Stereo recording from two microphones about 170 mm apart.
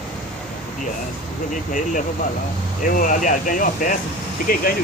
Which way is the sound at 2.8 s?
50° left (ahead or behind).